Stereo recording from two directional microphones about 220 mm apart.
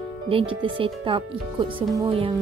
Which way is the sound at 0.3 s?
25° right (ahead or behind).